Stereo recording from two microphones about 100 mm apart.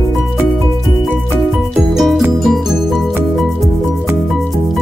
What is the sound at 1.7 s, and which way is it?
Music, 5° right (ahead or behind).